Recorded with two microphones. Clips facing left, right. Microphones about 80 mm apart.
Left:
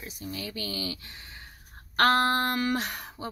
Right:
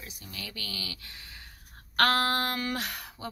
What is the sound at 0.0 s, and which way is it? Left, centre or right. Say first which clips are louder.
Speech: left 6 dB; left.